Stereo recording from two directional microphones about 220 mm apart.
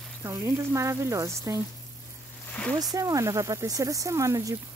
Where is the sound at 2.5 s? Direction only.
5° left (ahead or behind).